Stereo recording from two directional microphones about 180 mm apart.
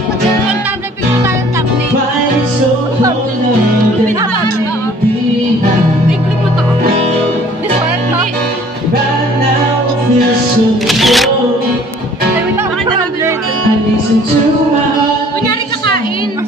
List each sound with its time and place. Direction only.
10.9 s music: centre (ahead or behind)